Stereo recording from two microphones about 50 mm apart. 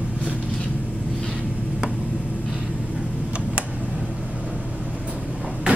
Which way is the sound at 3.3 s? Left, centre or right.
Right.